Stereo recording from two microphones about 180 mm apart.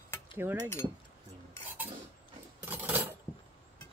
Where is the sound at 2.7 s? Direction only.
10° right (ahead or behind).